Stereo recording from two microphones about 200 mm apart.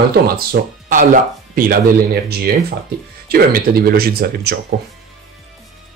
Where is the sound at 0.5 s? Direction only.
40° right (ahead or behind).